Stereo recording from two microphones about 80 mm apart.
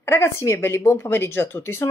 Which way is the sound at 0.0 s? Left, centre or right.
Left.